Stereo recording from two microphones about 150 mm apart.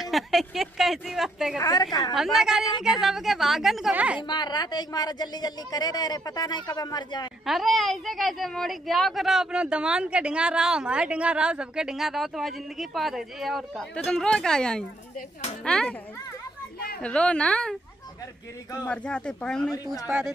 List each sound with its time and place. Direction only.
0.0 s speech: centre (ahead or behind)
1.6 s a woman's voice: 25° left (ahead or behind)
2.1 s a woman's voice: centre (ahead or behind)
4.3 s a woman's voice: 30° left (ahead or behind)
7.4 s a woman's voice: centre (ahead or behind)
17.0 s speech: 5° left (ahead or behind)
18.9 s speech: 5° left (ahead or behind)
19.7 s a woman's voice: 25° left (ahead or behind)
20.1 s a woman's voice: 5° right (ahead or behind)